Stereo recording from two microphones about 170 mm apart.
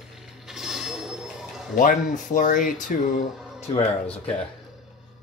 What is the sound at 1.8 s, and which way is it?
Speech, 50° left (ahead or behind).